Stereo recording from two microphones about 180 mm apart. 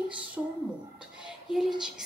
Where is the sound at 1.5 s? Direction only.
Centre (ahead or behind).